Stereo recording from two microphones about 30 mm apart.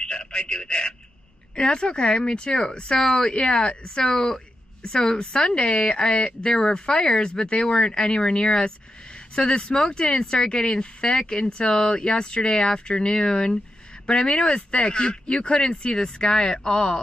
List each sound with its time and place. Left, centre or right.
0.0 s a sound: left
1.5 s speech: left
5.4 s speech: left
5.9 s speech: left